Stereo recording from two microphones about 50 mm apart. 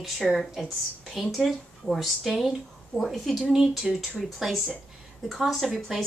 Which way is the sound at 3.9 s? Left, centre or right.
Centre.